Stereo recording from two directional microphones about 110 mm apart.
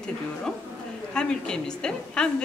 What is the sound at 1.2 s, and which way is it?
Speech, 5° left (ahead or behind).